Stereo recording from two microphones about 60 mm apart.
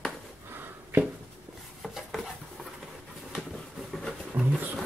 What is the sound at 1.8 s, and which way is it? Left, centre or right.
Dishes, centre.